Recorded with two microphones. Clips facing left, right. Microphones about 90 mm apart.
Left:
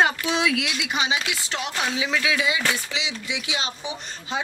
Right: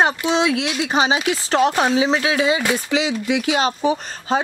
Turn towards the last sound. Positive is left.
turn(degrees=-45)  # may be behind; listen again after turning